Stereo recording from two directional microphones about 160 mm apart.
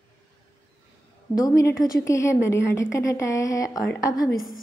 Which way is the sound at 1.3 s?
20° left (ahead or behind).